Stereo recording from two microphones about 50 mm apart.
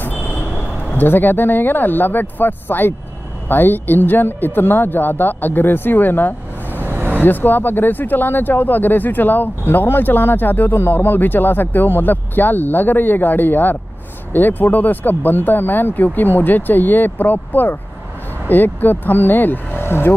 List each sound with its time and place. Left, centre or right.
0.9 s speech: left
6.9 s vehicle: right
7.2 s speech: left